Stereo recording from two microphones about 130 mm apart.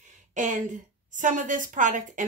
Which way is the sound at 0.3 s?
75° right (ahead or behind).